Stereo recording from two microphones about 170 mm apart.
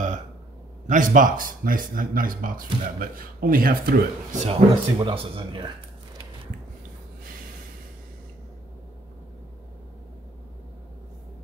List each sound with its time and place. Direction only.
0.8 s speech: 50° right (ahead or behind)
4.5 s speech: 30° right (ahead or behind)